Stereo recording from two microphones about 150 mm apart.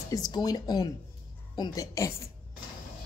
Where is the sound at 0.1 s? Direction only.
25° left (ahead or behind).